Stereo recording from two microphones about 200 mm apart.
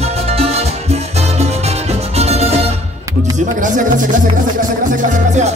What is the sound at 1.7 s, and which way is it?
Music, 30° right (ahead or behind).